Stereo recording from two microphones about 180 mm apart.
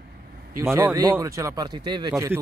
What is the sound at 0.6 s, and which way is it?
Speech, 15° right (ahead or behind).